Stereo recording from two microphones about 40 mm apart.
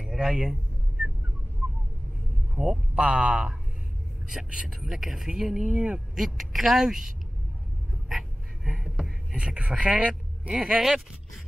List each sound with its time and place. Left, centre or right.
0.0 s a sound: centre
2.5 s a man's voice: centre
2.9 s speech: right
4.7 s speech: centre
6.1 s speech: centre
8.1 s a sound: centre
9.3 s speech: right
10.5 s speech: centre